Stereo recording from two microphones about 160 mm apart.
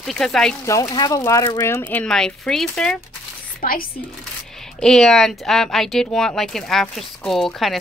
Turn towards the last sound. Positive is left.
turn(degrees=0)  # may be behind; listen again after turning